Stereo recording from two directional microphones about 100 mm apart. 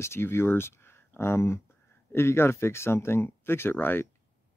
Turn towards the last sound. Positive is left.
turn(degrees=20)  # may be behind; listen again after turning